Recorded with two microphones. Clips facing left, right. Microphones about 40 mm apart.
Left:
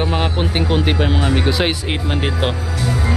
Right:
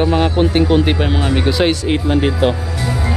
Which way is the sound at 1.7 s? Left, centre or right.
Centre.